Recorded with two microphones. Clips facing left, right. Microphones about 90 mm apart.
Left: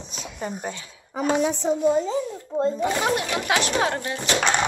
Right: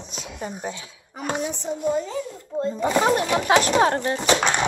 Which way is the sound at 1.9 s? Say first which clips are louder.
Left 3 dB; 20° left (ahead or behind).